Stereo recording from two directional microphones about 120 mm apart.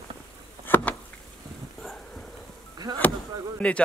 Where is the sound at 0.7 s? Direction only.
15° left (ahead or behind).